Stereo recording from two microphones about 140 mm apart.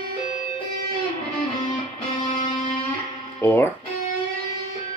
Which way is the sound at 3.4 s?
20° left (ahead or behind).